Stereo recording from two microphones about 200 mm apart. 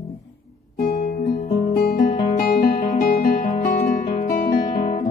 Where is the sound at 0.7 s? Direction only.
45° left (ahead or behind).